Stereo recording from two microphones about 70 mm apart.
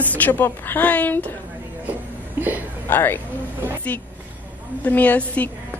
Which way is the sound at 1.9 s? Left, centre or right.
Right.